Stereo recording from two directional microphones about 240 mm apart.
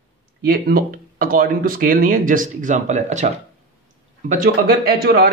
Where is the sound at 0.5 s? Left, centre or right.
Right.